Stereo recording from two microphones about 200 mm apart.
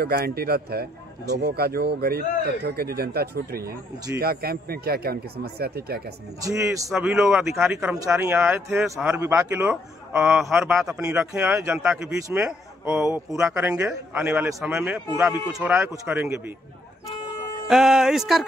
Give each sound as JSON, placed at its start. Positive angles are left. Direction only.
{"t": 0.0, "sound": "speech", "side_deg": -50}
{"t": 6.4, "sound": "speech", "side_deg": -15}
{"t": 6.9, "sound": "speech", "side_deg": -5}
{"t": 11.0, "sound": "speech", "side_deg": -15}
{"t": 17.6, "sound": "speech", "side_deg": 0}